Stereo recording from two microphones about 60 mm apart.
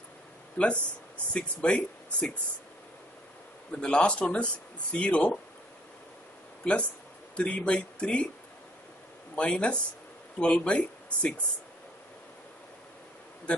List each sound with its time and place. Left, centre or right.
0.6 s speech: left
1.3 s speech: centre
3.7 s speech: centre
6.6 s speech: left
9.3 s speech: centre